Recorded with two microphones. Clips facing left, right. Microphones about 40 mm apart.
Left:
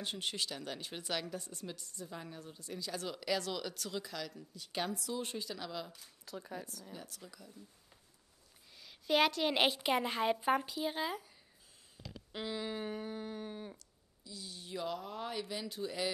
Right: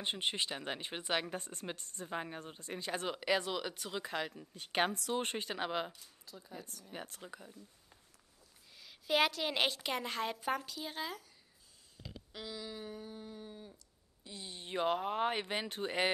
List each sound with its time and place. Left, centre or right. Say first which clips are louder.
0.0 s speech: right 3 dB; right
4.0 s speech: right 5 dB; right
6.2 s speech: left 6 dB; left
6.9 s speech: right 3 dB; right
8.7 s a woman's voice: left 1 dB; centre
12.3 s a sound: left 6 dB; left
12.8 s a sound: left 5 dB; left
14.2 s speech: right 1 dB; right